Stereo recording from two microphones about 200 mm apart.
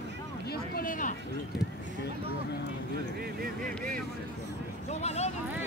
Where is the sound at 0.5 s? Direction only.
45° left (ahead or behind).